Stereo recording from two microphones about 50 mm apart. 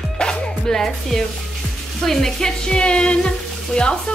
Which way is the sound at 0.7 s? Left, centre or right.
Centre.